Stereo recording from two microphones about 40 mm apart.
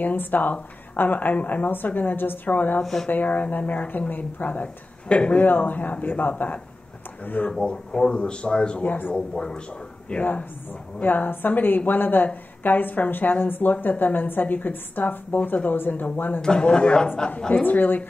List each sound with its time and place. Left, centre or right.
0.0 s a woman's voice: left
2.8 s speech: centre
3.1 s speech: left
5.0 s a man's voice: left
5.7 s a woman's voice: left
7.6 s a man's voice: left
8.8 s a woman's voice: left
9.1 s a man's voice: centre
10.1 s speech: left
11.0 s a woman's voice: left
16.3 s a man's voice: centre
17.5 s a woman's voice: left